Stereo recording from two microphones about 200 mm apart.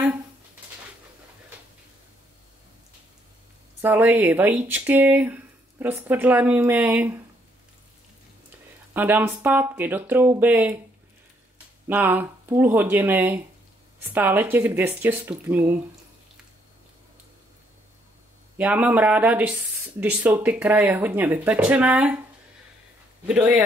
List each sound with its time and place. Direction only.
3.8 s speech: 10° right (ahead or behind)
8.9 s speech: 10° right (ahead or behind)
11.9 s speech: 10° right (ahead or behind)
18.6 s speech: 5° right (ahead or behind)
23.2 s a man's voice: 5° right (ahead or behind)